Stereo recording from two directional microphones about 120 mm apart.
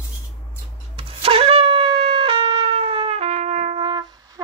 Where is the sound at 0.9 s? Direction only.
55° right (ahead or behind); by 3.8 s 75° right (ahead or behind).